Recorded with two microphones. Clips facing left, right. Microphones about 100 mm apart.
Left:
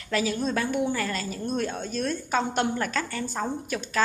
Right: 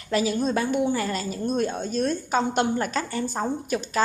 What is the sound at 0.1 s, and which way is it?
A woman's voice, 20° right (ahead or behind).